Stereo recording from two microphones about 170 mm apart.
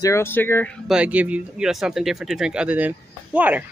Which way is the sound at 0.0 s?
15° left (ahead or behind).